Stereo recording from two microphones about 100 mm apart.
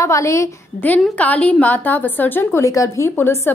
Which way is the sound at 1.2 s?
15° left (ahead or behind).